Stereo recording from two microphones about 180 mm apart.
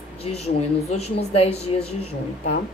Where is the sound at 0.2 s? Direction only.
35° left (ahead or behind).